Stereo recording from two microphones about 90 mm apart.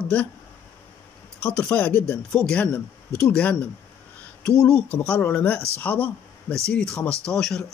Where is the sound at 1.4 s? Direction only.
20° left (ahead or behind).